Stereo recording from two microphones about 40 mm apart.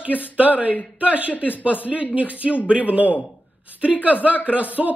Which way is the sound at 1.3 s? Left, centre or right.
Left.